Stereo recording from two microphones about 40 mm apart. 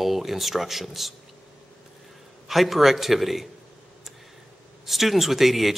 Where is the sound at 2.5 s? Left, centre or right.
Centre.